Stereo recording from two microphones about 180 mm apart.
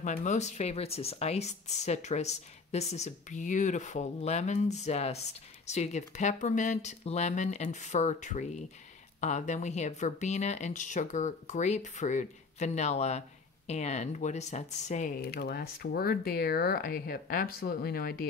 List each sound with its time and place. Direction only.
0.0 s speech: 40° left (ahead or behind)